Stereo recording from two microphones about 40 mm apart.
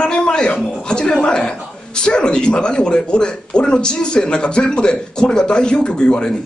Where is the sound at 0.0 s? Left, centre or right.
Left.